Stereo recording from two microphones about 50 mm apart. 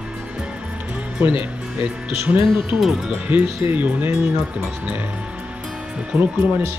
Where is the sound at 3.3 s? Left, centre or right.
Right.